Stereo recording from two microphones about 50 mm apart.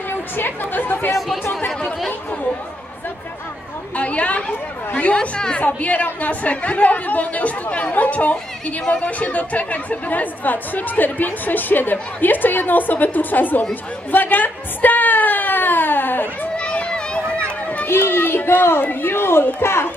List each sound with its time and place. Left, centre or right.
0.4 s speech: left
3.9 s chatter: left
4.9 s a woman's voice: left
14.1 s a sound: left
16.5 s a sound: left
17.8 s speech: left